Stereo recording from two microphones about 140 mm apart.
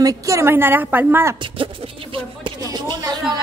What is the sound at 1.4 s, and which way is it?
Music, 40° right (ahead or behind).